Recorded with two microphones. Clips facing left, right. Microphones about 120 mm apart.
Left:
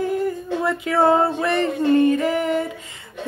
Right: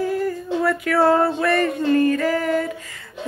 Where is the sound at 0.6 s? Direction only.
20° left (ahead or behind).